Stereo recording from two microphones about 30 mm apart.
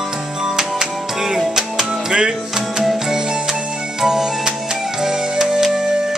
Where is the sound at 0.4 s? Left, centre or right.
Right.